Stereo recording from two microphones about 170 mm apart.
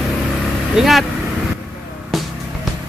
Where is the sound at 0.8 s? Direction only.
Centre (ahead or behind).